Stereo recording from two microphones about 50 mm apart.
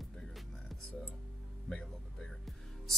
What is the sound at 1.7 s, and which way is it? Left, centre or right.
Music, centre.